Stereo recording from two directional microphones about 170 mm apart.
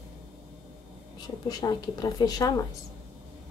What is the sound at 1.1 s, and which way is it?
Speech, 20° left (ahead or behind).